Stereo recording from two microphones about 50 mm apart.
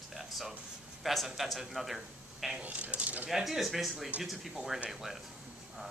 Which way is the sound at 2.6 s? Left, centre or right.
Right.